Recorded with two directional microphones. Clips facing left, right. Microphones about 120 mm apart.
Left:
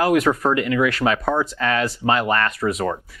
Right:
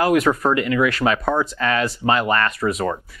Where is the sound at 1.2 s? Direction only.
15° right (ahead or behind).